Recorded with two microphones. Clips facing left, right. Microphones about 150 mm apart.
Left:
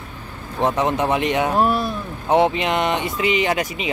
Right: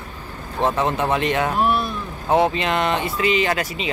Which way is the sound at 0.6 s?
20° left (ahead or behind).